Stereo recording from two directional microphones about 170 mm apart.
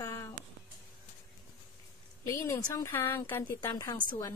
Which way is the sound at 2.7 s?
15° left (ahead or behind).